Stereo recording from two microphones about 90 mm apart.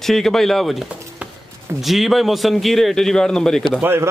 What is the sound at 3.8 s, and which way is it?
Speech, 25° right (ahead or behind).